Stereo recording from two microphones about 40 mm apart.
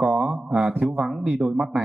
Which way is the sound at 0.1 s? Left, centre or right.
Right.